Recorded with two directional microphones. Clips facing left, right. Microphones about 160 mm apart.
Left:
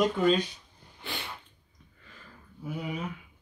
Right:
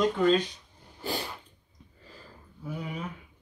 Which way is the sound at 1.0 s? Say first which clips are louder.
Right 7 dB; 40° right (ahead or behind).